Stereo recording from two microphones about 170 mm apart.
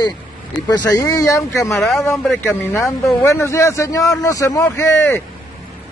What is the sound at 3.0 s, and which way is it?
A man's voice, 15° left (ahead or behind).